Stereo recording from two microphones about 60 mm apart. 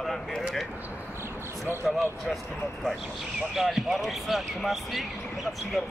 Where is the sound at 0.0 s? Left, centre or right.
Centre.